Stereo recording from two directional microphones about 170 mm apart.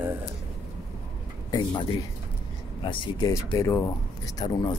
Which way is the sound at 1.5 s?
25° left (ahead or behind).